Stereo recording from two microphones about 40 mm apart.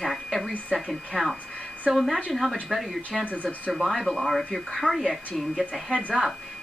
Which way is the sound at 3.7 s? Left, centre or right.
Centre.